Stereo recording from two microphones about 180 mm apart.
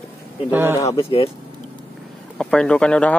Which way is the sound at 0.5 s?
10° right (ahead or behind).